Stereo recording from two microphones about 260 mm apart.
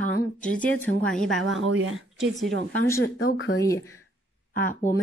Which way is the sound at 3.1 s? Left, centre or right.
Left.